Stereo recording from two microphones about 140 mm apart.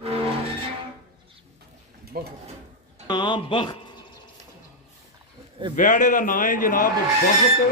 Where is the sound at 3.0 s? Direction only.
30° left (ahead or behind).